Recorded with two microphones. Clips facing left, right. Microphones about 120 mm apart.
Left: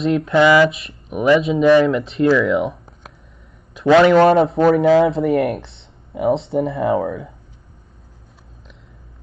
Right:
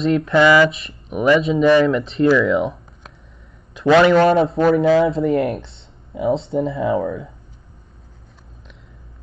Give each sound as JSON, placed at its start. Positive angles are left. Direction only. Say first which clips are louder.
{"t": 0.0, "sound": "a man's voice", "louder": "even", "side_deg": 0}
{"t": 4.1, "sound": "speech", "louder": "left 2 dB", "side_deg": 55}